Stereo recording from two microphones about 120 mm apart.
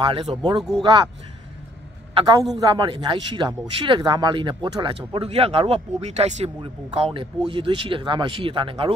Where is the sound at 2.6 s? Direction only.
40° right (ahead or behind).